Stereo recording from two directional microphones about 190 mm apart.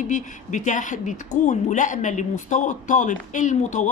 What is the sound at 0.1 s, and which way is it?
A woman's voice, 40° left (ahead or behind).